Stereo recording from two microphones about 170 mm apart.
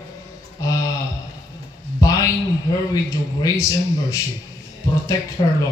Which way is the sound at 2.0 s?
20° left (ahead or behind).